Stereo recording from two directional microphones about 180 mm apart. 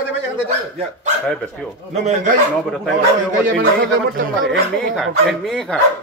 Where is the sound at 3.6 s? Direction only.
75° right (ahead or behind).